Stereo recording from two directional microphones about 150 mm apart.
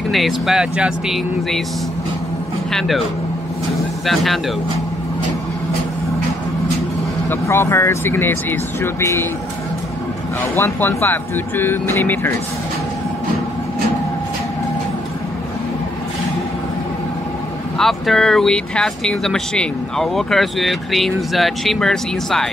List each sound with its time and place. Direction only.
0.1 s speech: centre (ahead or behind)
4.0 s speech: centre (ahead or behind)
7.2 s speech: 15° left (ahead or behind)
10.4 s speech: 15° left (ahead or behind)
17.7 s speech: centre (ahead or behind)